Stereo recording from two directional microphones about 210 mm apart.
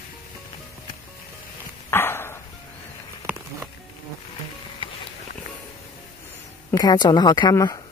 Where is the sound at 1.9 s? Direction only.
10° left (ahead or behind).